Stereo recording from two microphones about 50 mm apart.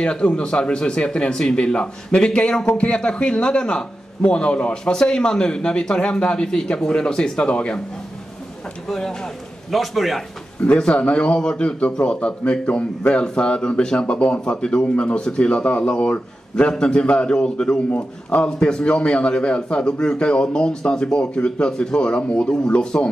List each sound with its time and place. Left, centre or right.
0.0 s a man's voice: left
8.8 s speech: centre
9.7 s a man's voice: centre
10.8 s a man's voice: left